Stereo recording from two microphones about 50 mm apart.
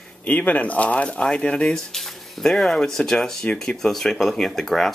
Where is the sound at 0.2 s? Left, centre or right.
Left.